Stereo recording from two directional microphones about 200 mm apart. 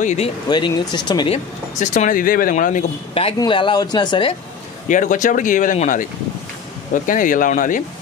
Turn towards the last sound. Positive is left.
turn(degrees=40)  # may be behind; listen again after turning